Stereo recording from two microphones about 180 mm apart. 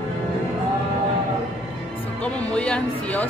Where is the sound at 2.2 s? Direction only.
5° left (ahead or behind).